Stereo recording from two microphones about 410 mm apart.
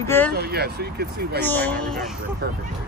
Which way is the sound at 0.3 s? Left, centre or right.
Right.